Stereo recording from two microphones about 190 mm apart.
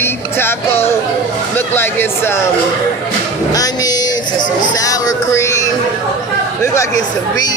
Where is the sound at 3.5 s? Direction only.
20° left (ahead or behind).